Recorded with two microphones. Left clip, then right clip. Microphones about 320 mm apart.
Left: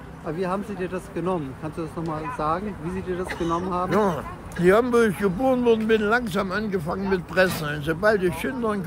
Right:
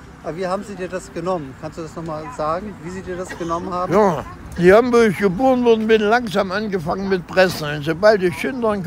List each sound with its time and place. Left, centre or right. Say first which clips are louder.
0.4 s speech: right 4 dB; centre
3.9 s speech: right 9 dB; right